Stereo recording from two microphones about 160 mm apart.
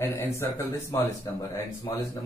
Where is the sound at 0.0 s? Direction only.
15° left (ahead or behind).